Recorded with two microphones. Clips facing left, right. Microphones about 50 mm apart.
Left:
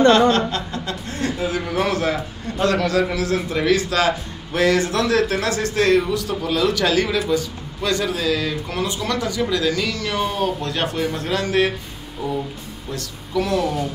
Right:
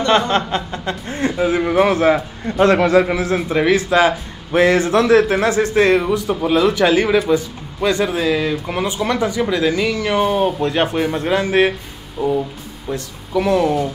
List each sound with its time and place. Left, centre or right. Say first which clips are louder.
0.5 s a man's voice: right 4 dB; right
12.2 s music: right 7 dB; centre
12.9 s a man's voice: right 3 dB; right